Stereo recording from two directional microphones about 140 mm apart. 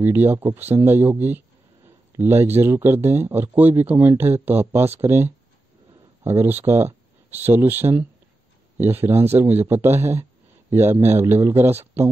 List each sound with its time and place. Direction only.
0.0 s speech: 15° right (ahead or behind)